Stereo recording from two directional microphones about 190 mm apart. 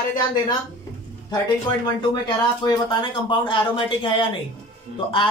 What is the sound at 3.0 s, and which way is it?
Speech, 25° left (ahead or behind).